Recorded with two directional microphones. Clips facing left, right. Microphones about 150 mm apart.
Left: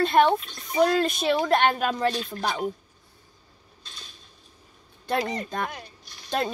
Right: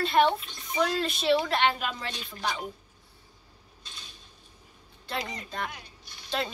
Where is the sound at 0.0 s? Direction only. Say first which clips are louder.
Left 4 dB; 50° left (ahead or behind).